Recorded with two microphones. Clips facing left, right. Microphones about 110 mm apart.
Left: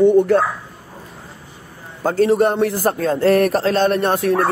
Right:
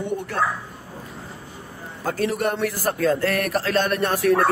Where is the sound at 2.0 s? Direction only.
30° left (ahead or behind).